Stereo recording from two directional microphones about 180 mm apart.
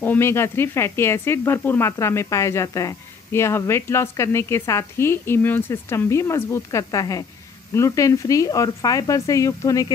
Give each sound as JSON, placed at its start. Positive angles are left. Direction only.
{"t": 0.0, "sound": "speech", "side_deg": 10}